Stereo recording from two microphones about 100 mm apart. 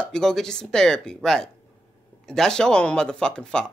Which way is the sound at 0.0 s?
5° left (ahead or behind).